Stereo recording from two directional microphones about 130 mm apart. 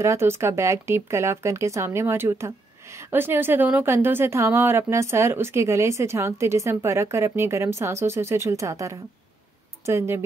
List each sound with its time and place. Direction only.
0.0 s speech: 20° right (ahead or behind)